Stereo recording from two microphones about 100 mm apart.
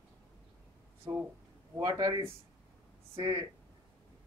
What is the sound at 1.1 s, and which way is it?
Speech, 45° right (ahead or behind).